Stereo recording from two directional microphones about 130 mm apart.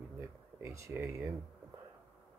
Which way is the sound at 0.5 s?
20° right (ahead or behind).